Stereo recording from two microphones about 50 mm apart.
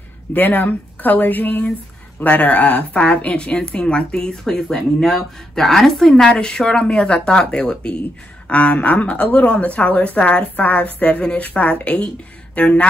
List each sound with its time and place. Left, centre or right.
0.3 s a woman's voice: left
2.2 s a woman's voice: left